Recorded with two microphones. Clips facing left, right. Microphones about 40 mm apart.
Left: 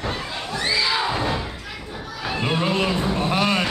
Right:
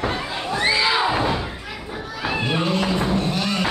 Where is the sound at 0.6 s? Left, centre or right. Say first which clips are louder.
Right 3 dB; right.